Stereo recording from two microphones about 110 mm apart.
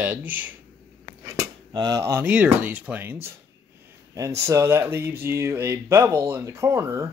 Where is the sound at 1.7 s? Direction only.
35° right (ahead or behind).